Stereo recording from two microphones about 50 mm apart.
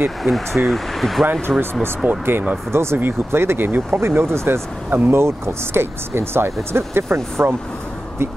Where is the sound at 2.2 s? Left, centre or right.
Right.